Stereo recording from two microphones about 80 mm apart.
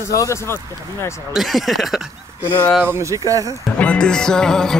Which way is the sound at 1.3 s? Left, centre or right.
Centre.